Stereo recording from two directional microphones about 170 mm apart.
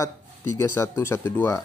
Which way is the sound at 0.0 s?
15° left (ahead or behind).